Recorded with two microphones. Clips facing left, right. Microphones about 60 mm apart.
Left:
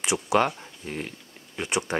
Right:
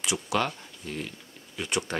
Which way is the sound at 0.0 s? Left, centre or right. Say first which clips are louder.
Left 5 dB; left.